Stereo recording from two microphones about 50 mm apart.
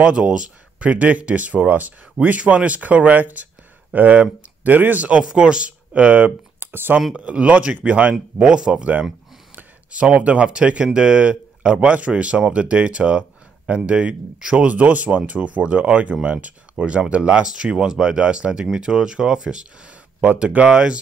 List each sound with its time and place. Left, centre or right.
0.0 s speech: right
5.2 s speech: centre
6.6 s a sound: right
7.2 s speech: right
8.1 s speech: centre
9.9 s speech: right